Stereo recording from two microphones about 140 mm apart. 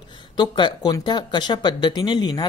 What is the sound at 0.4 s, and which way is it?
Speech, 30° left (ahead or behind).